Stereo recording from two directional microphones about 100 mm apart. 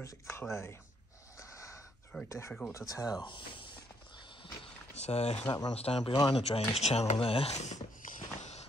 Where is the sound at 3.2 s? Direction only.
50° left (ahead or behind).